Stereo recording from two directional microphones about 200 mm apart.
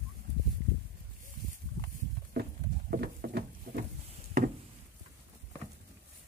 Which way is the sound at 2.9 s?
50° right (ahead or behind).